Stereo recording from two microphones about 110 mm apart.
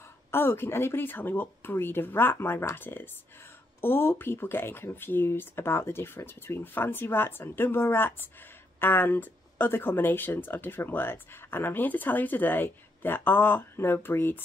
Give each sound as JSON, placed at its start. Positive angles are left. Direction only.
{"t": 0.3, "sound": "speech", "side_deg": 20}